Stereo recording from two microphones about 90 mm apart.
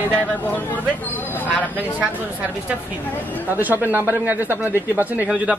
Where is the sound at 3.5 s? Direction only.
20° right (ahead or behind).